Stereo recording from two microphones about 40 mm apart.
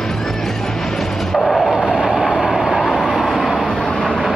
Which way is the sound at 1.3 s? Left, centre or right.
Centre.